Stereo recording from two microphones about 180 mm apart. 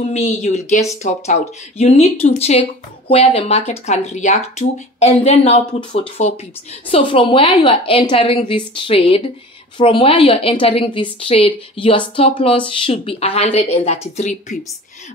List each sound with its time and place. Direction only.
0.0 s a woman's voice: 40° left (ahead or behind)